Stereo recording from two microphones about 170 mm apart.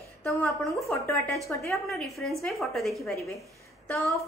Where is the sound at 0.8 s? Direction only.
15° left (ahead or behind).